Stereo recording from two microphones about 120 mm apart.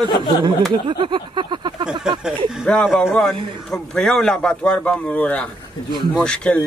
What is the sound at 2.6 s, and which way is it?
A man's voice, 5° left (ahead or behind).